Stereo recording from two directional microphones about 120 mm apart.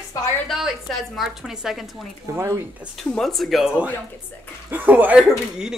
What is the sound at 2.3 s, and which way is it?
Speech, 25° right (ahead or behind).